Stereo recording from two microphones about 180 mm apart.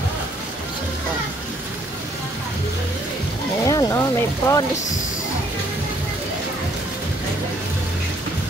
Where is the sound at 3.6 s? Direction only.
20° left (ahead or behind).